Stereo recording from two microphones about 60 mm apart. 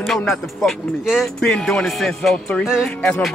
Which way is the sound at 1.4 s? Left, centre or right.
Centre.